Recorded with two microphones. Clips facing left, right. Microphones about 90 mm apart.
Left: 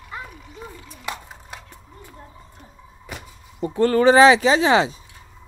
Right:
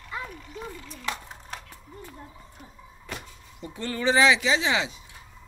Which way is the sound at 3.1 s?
10° left (ahead or behind).